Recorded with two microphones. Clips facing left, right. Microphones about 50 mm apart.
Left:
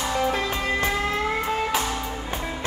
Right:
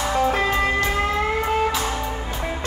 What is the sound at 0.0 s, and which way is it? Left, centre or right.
Music, right.